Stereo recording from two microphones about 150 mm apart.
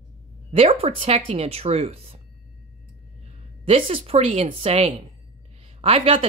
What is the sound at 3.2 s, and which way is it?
A woman's voice, 40° right (ahead or behind).